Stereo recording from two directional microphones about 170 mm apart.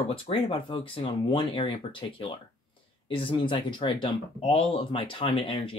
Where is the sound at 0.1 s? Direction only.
30° left (ahead or behind).